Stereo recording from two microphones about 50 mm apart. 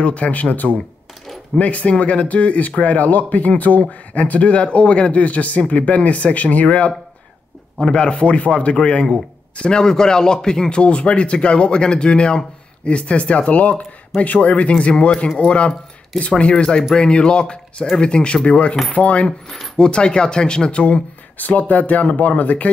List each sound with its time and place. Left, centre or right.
0.0 s a man's voice: left
0.7 s a sound: centre
1.6 s a man's voice: left
19.8 s speech: centre
21.4 s speech: left